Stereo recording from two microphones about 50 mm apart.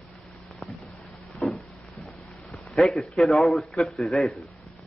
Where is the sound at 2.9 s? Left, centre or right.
Centre.